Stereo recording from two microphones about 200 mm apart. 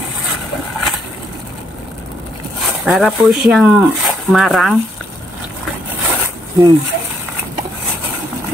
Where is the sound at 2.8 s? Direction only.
Centre (ahead or behind).